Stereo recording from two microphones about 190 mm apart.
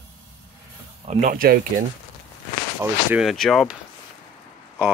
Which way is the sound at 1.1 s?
40° right (ahead or behind).